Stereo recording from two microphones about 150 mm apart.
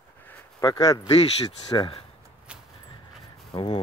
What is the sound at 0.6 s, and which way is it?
Speech, 25° left (ahead or behind).